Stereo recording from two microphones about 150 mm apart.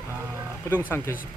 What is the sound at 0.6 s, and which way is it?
Speech, 15° left (ahead or behind).